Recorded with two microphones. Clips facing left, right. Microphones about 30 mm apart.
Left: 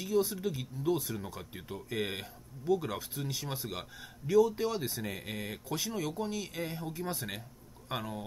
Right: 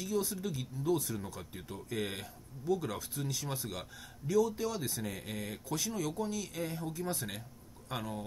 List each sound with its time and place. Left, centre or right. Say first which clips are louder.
0.0 s speech: left 4 dB; centre
7.9 s speech: left 1 dB; centre